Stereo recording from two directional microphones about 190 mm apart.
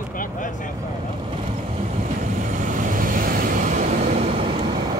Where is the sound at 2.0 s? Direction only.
40° right (ahead or behind).